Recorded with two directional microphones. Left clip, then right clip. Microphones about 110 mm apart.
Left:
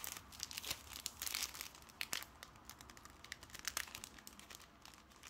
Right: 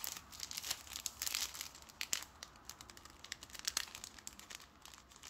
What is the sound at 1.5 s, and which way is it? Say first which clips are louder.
Crumpling: right 1 dB; 15° left (ahead or behind).